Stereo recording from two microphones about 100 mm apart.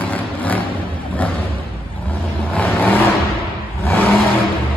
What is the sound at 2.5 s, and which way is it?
Vehicle, 15° left (ahead or behind).